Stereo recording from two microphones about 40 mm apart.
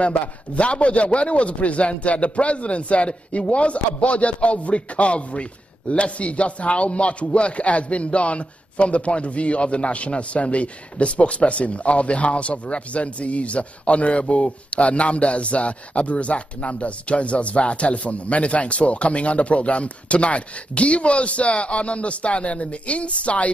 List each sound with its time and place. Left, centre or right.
0.0 s a man's voice: left